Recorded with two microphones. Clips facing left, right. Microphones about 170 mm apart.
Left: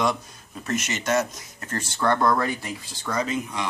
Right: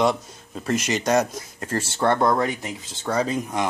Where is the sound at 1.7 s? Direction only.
30° right (ahead or behind).